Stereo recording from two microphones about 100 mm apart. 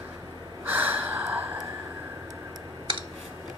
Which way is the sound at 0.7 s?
20° right (ahead or behind).